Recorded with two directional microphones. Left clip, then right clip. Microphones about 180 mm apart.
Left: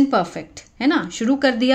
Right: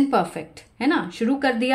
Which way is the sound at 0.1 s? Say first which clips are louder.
Left 2 dB; 20° left (ahead or behind).